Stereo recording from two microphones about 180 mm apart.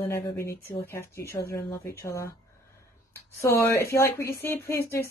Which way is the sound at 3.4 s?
15° left (ahead or behind).